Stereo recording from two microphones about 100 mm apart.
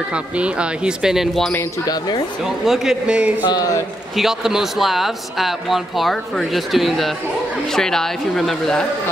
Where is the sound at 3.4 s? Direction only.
40° left (ahead or behind).